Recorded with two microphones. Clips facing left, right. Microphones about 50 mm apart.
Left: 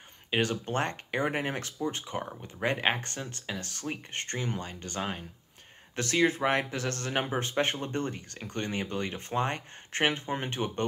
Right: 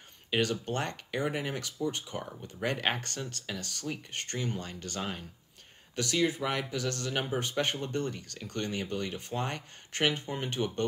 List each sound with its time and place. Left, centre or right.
0.3 s speech: left
5.9 s speech: left